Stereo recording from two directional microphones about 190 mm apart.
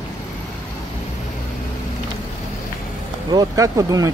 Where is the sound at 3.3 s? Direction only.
20° right (ahead or behind).